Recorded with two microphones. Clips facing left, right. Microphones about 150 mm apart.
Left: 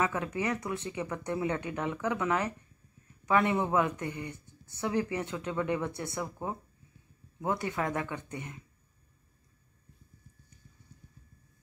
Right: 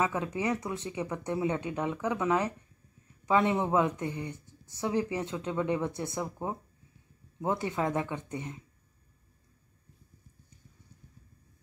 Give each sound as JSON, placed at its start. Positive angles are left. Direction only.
{"t": 0.0, "sound": "speech", "side_deg": -15}
{"t": 7.4, "sound": "speech", "side_deg": -20}